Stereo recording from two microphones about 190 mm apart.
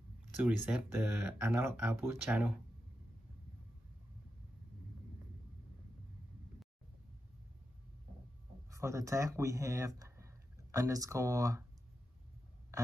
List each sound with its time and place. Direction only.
0.4 s speech: 5° right (ahead or behind)
8.6 s speech: 15° right (ahead or behind)